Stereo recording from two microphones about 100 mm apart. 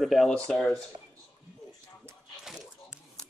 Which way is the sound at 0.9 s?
65° right (ahead or behind).